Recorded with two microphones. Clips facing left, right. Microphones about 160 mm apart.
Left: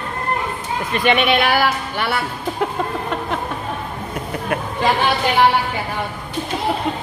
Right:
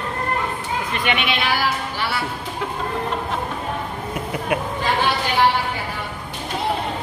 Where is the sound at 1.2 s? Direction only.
55° left (ahead or behind).